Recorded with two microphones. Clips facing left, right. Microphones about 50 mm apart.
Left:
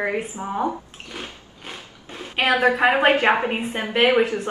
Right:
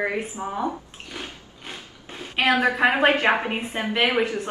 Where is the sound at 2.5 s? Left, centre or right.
Left.